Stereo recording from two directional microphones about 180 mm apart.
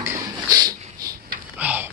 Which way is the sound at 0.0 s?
15° right (ahead or behind).